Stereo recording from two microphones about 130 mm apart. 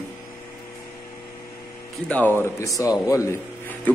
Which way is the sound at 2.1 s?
15° left (ahead or behind).